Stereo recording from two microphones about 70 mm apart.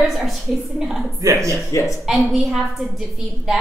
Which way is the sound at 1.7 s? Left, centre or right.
Left.